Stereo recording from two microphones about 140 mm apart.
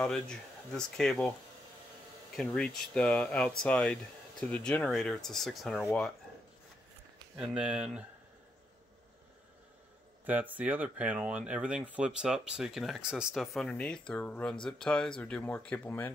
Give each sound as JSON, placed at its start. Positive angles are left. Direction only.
{"t": 0.0, "sound": "speech", "side_deg": 5}
{"t": 2.3, "sound": "speech", "side_deg": 5}
{"t": 7.3, "sound": "speech", "side_deg": -5}
{"t": 10.2, "sound": "speech", "side_deg": -10}